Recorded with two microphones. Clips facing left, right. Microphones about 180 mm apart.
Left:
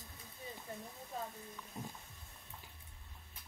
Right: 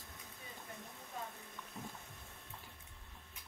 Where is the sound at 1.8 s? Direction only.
15° left (ahead or behind).